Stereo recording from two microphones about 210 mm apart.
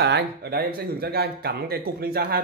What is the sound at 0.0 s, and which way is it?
Speech, 50° right (ahead or behind).